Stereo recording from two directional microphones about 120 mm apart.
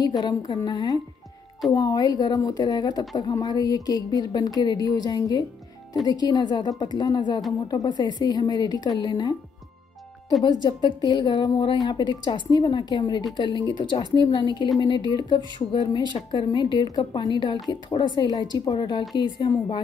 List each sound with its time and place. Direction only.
0.2 s speech: 35° left (ahead or behind)
10.4 s speech: 40° left (ahead or behind)